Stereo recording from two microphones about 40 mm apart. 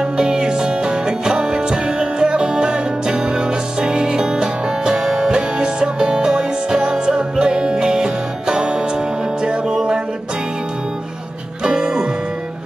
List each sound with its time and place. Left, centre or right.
0.0 s music: centre
11.6 s music: centre